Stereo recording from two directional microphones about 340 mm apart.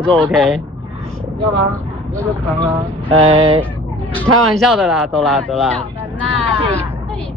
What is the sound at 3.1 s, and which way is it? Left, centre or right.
Speech, centre.